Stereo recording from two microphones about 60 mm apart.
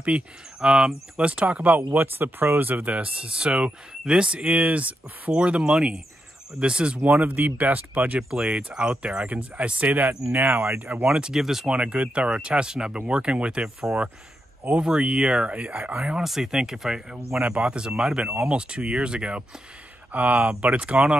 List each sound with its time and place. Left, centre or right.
0.0 s speech: centre
7.0 s speech: right
8.2 s speech: centre
10.3 s speech: right
11.1 s speech: centre
11.7 s speech: centre
16.1 s speech: centre
20.1 s speech: right